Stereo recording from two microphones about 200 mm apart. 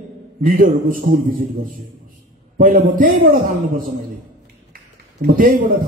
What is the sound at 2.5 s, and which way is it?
A man's voice, 45° right (ahead or behind).